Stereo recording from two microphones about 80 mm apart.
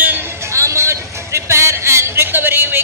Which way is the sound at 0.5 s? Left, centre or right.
Right.